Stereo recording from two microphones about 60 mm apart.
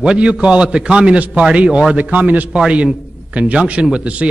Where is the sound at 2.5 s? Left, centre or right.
Centre.